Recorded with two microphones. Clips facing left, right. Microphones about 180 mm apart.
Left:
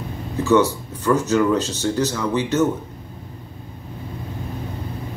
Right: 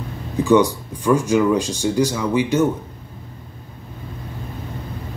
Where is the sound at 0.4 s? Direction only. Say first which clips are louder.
Right 2 dB; 15° right (ahead or behind).